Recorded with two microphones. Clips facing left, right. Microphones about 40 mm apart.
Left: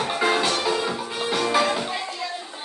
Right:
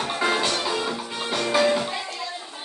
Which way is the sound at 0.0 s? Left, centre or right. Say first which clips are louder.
Left 2 dB; centre.